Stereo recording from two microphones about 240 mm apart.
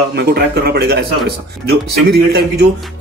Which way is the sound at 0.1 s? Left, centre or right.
Right.